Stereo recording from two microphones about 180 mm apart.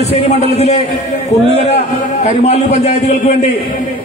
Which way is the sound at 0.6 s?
35° left (ahead or behind).